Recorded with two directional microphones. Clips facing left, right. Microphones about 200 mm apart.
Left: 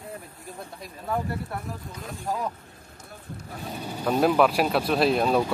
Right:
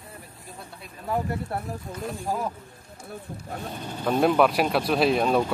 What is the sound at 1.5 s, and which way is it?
Speech, 30° right (ahead or behind).